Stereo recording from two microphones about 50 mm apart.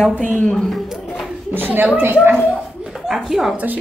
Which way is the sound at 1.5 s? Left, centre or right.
Right.